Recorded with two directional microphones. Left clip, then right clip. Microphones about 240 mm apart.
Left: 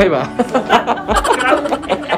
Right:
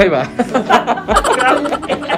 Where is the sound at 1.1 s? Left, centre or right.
Centre.